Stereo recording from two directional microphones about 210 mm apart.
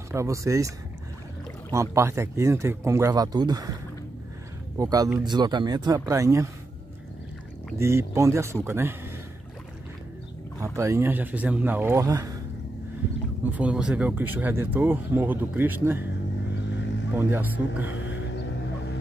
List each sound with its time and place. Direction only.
0.1 s speech: 15° right (ahead or behind)
4.7 s speech: 15° right (ahead or behind)
7.8 s speech: 15° right (ahead or behind)
10.6 s speech: 15° right (ahead or behind)
13.4 s speech: 5° right (ahead or behind)
17.1 s speech: 10° right (ahead or behind)